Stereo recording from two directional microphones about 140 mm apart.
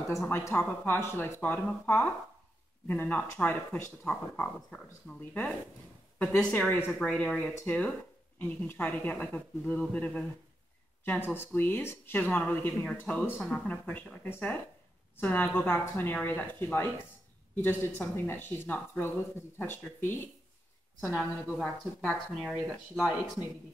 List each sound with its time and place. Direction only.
0.3 s speech: 15° left (ahead or behind)
21.1 s speech: centre (ahead or behind)